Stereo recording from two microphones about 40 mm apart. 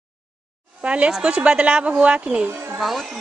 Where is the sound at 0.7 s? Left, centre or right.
Right.